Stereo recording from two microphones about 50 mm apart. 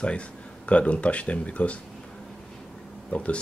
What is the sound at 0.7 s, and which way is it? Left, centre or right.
Speech, left.